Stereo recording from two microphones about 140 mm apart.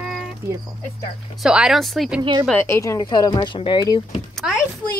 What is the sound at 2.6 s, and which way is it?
Speech, 20° left (ahead or behind).